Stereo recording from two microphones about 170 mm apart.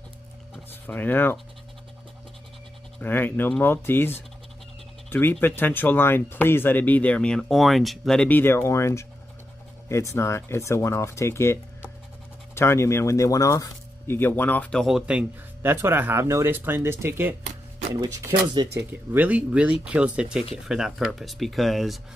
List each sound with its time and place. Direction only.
0.7 s speech: 10° left (ahead or behind)
3.0 s speech: 10° left (ahead or behind); by 17.4 s 15° right (ahead or behind)
18.9 s speech: 10° right (ahead or behind)